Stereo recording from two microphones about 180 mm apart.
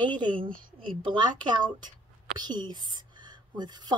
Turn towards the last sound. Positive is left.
turn(degrees=-25)  # may be behind; listen again after turning